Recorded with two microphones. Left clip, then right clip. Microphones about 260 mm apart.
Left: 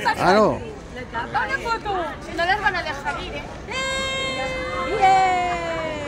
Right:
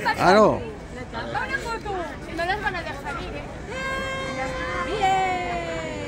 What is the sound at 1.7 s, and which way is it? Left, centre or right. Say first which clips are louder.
Speech: left 5 dB; left.